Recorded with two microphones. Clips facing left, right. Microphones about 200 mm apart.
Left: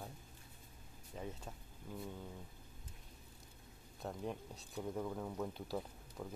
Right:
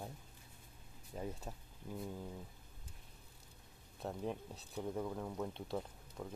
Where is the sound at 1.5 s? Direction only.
30° right (ahead or behind).